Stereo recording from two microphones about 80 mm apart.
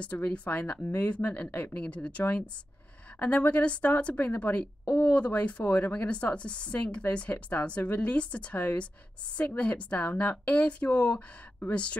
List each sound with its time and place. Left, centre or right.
0.0 s a woman's voice: centre